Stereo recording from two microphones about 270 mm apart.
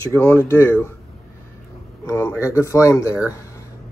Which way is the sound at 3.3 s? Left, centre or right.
Centre.